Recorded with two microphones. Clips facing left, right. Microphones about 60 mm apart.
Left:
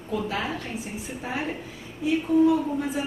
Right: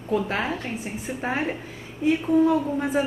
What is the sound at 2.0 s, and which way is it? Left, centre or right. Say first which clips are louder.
A man's voice: right 1 dB; right.